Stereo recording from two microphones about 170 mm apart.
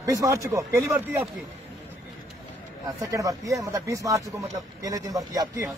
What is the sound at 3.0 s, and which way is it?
Speech, 20° right (ahead or behind).